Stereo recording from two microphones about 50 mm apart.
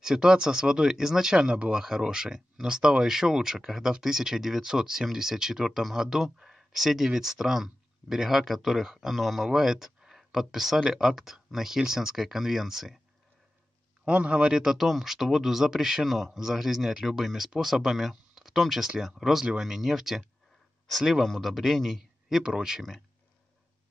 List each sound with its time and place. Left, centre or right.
0.0 s speech: centre
14.0 s a man's voice: right
14.5 s speech: centre
22.4 s speech: centre
22.8 s speech: centre